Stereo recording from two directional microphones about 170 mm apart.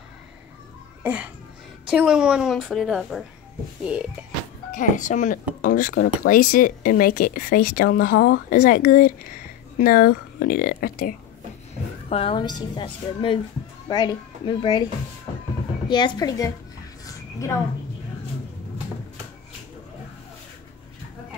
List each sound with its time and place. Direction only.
1.0 s babbling: 5° right (ahead or behind)
1.9 s a woman's voice: 5° right (ahead or behind)
4.7 s speech: 50° left (ahead or behind)
12.1 s a woman's voice: 30° left (ahead or behind)
15.9 s a woman's voice: 25° left (ahead or behind)
17.0 s a sound: 15° left (ahead or behind)